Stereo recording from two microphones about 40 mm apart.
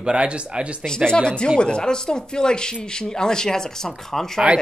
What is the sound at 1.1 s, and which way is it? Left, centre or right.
Speech, left.